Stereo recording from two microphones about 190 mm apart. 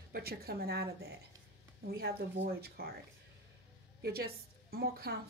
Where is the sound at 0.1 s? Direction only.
55° right (ahead or behind).